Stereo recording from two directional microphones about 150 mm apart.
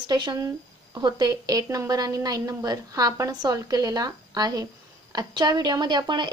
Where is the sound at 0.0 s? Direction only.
30° right (ahead or behind).